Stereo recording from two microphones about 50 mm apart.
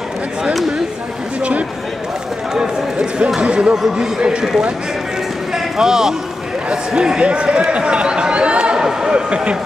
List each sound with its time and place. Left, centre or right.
0.4 s speech: centre
2.5 s run: centre
3.3 s speech: centre
5.5 s a sound: centre
6.7 s speech: centre